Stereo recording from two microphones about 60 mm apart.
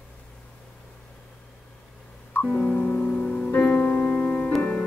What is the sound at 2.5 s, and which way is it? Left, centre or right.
Music, centre.